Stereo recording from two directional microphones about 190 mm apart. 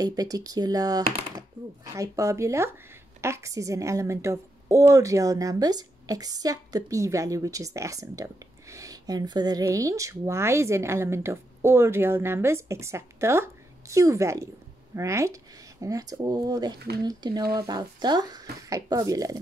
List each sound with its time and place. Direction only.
0.0 s a woman's voice: 20° right (ahead or behind)